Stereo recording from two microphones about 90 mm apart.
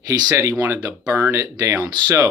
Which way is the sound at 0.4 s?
30° right (ahead or behind).